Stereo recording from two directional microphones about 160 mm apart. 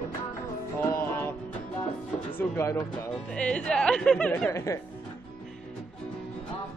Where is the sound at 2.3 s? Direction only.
15° left (ahead or behind).